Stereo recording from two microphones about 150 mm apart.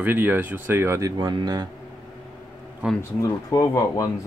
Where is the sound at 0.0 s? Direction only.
15° right (ahead or behind); by 1.7 s 30° right (ahead or behind).